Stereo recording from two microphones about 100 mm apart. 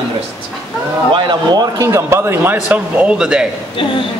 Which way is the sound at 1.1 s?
50° right (ahead or behind).